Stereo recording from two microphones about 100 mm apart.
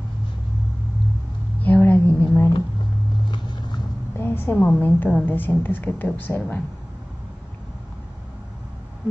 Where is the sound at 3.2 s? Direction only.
50° left (ahead or behind).